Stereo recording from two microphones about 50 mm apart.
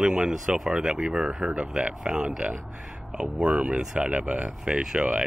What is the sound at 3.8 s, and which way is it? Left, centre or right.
Speech, centre.